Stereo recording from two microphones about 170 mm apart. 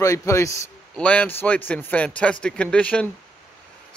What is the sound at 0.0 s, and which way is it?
Speech, 20° left (ahead or behind).